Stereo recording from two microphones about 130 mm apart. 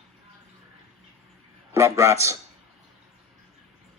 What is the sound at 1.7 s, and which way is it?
Speech, 20° right (ahead or behind).